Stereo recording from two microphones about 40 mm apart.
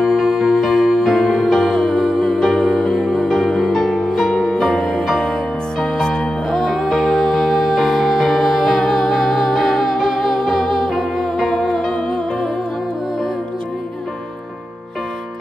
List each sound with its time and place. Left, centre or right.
0.0 s music: centre
2.3 s music: centre
2.6 s music: centre
6.5 s music: centre